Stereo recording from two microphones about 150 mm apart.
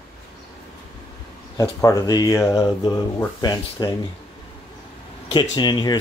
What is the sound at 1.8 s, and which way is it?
Speech, 25° left (ahead or behind).